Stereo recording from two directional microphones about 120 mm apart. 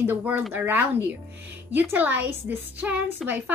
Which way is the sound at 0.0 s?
15° right (ahead or behind).